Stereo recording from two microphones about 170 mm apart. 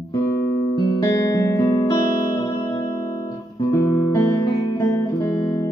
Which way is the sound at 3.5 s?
20° left (ahead or behind).